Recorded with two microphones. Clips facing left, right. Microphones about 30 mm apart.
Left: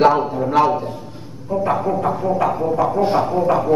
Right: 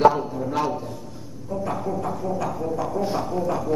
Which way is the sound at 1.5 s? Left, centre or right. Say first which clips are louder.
Left 8 dB; left.